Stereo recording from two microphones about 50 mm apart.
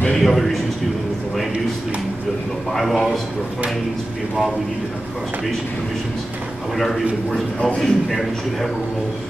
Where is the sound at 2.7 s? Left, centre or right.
Centre.